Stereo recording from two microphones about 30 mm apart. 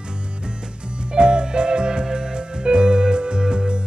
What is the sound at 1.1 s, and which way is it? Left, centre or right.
Music, right.